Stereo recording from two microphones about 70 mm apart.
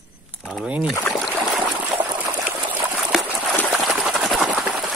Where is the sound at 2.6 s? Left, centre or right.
Right.